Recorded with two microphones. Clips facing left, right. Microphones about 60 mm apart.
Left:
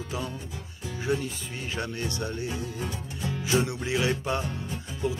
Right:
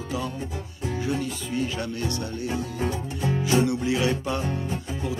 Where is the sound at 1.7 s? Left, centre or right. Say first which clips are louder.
Right 3 dB; left.